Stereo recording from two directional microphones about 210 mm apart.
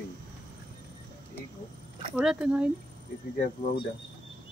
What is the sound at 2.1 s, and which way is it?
Speech, 5° right (ahead or behind).